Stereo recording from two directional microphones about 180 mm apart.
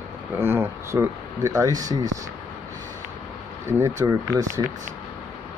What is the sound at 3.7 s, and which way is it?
Speech, 15° right (ahead or behind).